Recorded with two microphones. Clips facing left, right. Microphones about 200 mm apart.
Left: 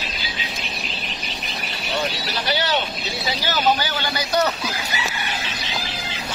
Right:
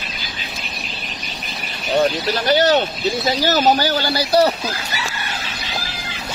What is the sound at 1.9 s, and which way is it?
Speech, 45° right (ahead or behind).